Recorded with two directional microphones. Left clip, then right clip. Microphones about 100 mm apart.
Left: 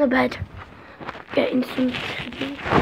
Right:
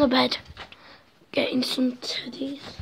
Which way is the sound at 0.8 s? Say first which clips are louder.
Left 15 dB; 5° left (ahead or behind).